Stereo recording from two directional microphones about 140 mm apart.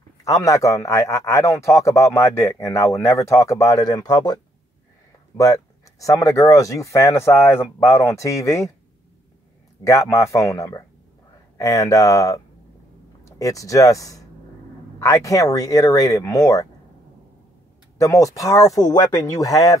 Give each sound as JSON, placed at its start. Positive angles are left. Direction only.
{"t": 0.2, "sound": "a man's voice", "side_deg": 25}
{"t": 5.4, "sound": "a man's voice", "side_deg": 25}
{"t": 9.8, "sound": "a man's voice", "side_deg": 20}
{"t": 17.9, "sound": "a man's voice", "side_deg": 25}